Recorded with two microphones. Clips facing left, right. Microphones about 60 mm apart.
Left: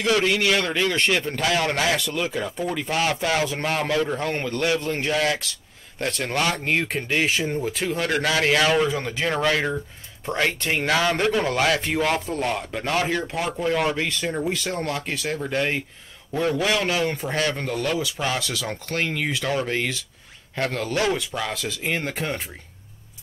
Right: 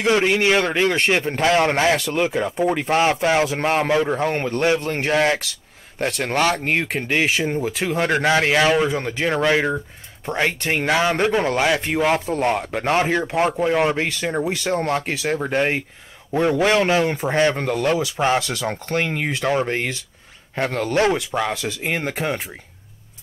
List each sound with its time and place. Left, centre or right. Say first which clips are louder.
0.0 s a man's voice: right 3 dB; right
5.9 s a man's voice: right 4 dB; centre
12.4 s a man's voice: right 6 dB; right
14.9 s a man's voice: right 5 dB; right
20.8 s a man's voice: right 6 dB; right; by 22.4 s centre